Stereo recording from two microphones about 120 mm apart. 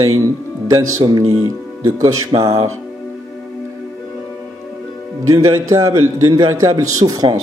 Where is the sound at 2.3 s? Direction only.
55° right (ahead or behind).